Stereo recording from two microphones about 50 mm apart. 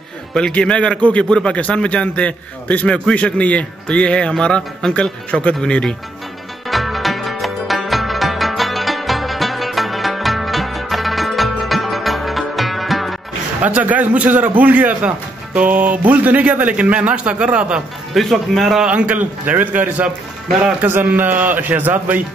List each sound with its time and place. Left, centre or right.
0.5 s a man's voice: left
6.7 s music: centre
13.6 s a man's voice: right
18.1 s speech: centre
18.9 s a man's voice: right